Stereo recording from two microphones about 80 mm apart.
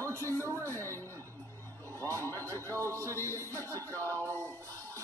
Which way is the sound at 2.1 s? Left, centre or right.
Left.